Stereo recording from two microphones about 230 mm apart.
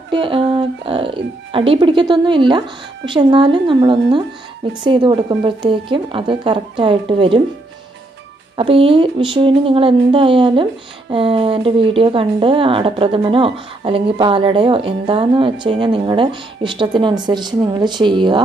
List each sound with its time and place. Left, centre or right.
0.1 s a woman's voice: right
8.5 s speech: right